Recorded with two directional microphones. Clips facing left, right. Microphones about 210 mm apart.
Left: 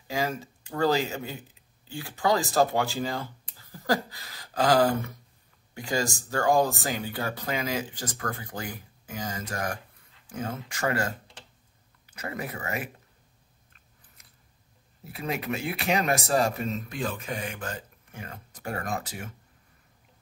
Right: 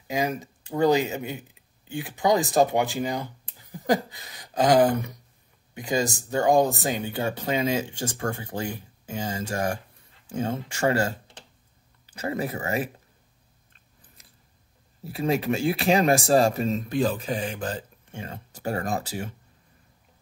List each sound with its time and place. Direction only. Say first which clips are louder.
0.1 s speech: right 3 dB; 15° right (ahead or behind)
15.0 s speech: right 7 dB; 30° right (ahead or behind)